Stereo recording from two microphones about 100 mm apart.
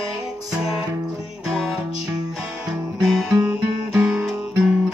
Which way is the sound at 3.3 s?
35° right (ahead or behind).